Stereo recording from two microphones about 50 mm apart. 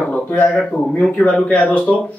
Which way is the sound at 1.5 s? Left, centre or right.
Left.